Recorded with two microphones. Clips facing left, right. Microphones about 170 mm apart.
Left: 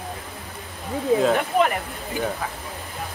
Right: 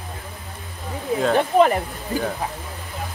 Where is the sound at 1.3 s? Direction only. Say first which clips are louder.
Right 4 dB; 35° right (ahead or behind).